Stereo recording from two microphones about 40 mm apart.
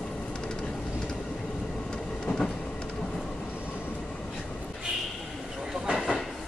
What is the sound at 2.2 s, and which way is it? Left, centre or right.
Train, centre.